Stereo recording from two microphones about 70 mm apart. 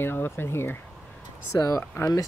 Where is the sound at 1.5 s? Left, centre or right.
Left.